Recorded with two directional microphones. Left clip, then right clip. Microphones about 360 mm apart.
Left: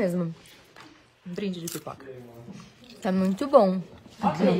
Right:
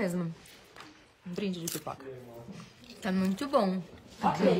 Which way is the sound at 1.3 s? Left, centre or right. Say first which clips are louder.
Left 3 dB; centre.